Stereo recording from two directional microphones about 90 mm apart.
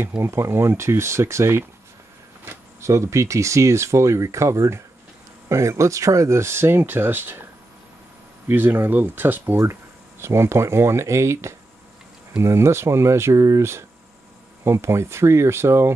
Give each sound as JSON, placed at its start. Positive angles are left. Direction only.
{"t": 0.2, "sound": "speech", "side_deg": -30}
{"t": 8.5, "sound": "speech", "side_deg": -25}